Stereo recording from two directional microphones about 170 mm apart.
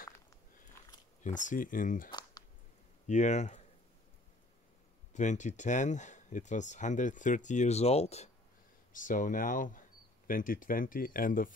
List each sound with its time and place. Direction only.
0.0 s a sound: 15° left (ahead or behind)
1.2 s speech: 45° left (ahead or behind)
2.0 s a sound: 25° left (ahead or behind)
3.1 s speech: 45° left (ahead or behind)
5.1 s speech: 45° left (ahead or behind)
8.9 s speech: 50° left (ahead or behind)